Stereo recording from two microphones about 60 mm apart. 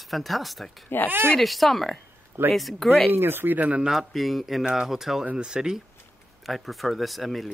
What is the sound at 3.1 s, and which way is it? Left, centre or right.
Speech, right.